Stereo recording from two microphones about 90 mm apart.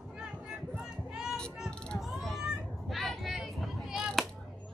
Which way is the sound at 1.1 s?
5° right (ahead or behind).